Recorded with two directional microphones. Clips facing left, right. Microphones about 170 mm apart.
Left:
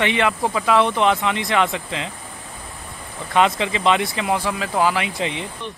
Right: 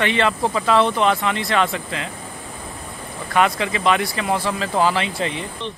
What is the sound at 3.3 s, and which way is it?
Speech, 20° left (ahead or behind).